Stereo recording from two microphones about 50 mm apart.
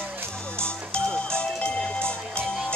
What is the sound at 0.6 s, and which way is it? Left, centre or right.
Music, centre.